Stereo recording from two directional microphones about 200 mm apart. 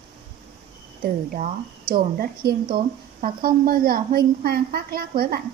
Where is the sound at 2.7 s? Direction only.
45° right (ahead or behind).